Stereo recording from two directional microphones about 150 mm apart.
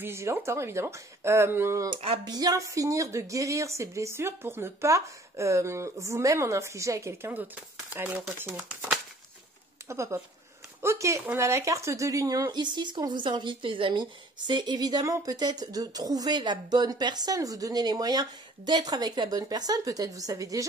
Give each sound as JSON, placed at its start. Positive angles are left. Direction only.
{"t": 0.0, "sound": "a woman's voice", "side_deg": -15}
{"t": 9.8, "sound": "a woman's voice", "side_deg": -20}